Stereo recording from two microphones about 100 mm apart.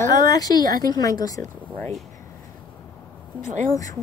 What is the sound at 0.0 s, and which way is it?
Speech, 35° left (ahead or behind).